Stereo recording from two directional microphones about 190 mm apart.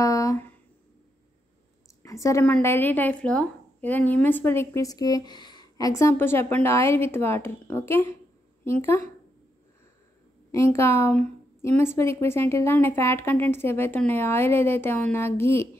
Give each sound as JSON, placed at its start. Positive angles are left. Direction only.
{"t": 0.0, "sound": "a sound", "side_deg": 15}
{"t": 2.0, "sound": "a woman's voice", "side_deg": 15}
{"t": 10.5, "sound": "a woman's voice", "side_deg": 15}